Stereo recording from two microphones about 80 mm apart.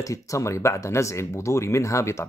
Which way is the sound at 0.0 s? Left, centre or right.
Left.